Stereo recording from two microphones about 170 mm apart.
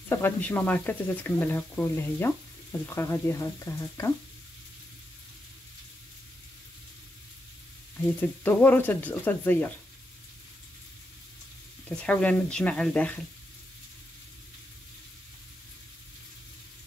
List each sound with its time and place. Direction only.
0.1 s speech: 10° left (ahead or behind)
8.2 s speech: 10° left (ahead or behind)
11.9 s speech: 5° left (ahead or behind)